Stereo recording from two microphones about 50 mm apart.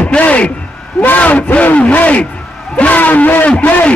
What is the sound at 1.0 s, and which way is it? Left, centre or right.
A man's voice, left.